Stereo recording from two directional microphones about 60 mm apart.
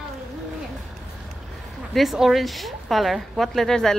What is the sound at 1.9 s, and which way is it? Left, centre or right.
A woman's voice, centre.